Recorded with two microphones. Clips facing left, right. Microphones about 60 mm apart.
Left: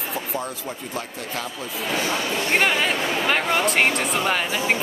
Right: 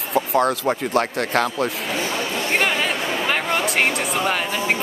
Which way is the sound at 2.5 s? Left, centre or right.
Centre.